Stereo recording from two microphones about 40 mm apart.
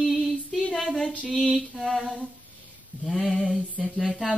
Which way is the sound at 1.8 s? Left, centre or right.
Centre.